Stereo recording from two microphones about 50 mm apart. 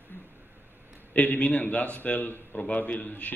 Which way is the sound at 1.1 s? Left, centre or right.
Left.